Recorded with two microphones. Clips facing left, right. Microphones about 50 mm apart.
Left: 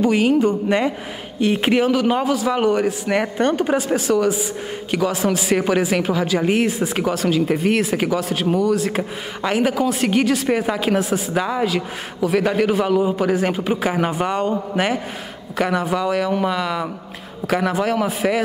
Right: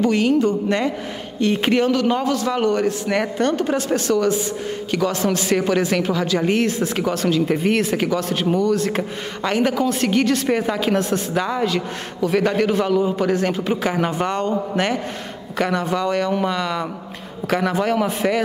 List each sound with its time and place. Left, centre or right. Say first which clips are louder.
0.0 s a woman's voice: left 1 dB; centre